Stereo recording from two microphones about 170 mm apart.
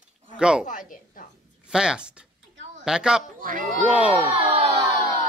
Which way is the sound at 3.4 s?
55° right (ahead or behind).